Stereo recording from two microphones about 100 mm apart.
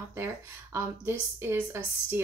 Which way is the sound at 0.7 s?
25° right (ahead or behind).